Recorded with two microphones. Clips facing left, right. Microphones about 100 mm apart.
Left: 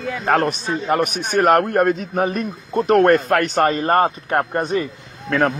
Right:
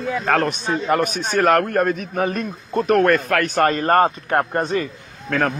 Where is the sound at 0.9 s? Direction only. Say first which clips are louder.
Left 2 dB; 15° left (ahead or behind).